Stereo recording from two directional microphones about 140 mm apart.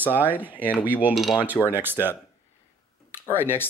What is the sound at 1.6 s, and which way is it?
Speech, 15° right (ahead or behind).